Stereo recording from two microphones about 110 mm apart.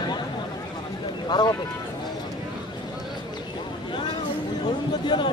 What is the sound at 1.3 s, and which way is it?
Speech, 40° left (ahead or behind).